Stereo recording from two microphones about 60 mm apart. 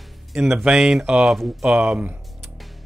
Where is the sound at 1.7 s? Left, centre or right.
Centre.